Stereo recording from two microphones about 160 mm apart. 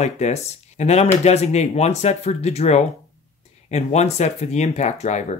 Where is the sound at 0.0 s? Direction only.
45° left (ahead or behind).